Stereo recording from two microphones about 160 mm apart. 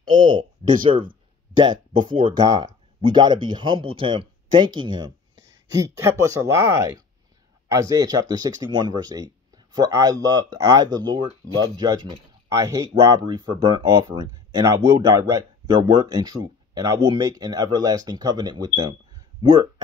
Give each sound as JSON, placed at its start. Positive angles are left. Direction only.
{"t": 0.1, "sound": "speech", "side_deg": -30}
{"t": 1.6, "sound": "speech", "side_deg": -30}
{"t": 5.7, "sound": "speech", "side_deg": -15}